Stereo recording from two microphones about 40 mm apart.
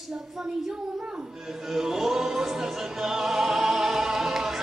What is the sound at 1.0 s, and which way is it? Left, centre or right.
Music, right.